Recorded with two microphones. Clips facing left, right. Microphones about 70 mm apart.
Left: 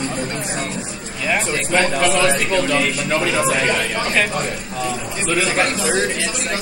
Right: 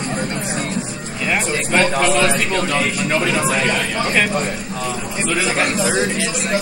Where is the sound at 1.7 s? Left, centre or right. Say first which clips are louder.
Right 1 dB; right.